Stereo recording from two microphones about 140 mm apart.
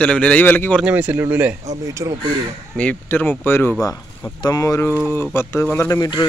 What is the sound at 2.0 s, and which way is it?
Speech, 30° right (ahead or behind).